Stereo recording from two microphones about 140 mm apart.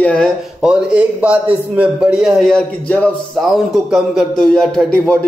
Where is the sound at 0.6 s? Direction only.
10° right (ahead or behind).